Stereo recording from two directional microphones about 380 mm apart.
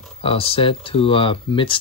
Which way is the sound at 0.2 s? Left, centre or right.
Centre.